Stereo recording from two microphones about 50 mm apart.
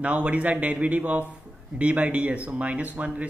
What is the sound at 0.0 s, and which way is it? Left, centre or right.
Speech, right.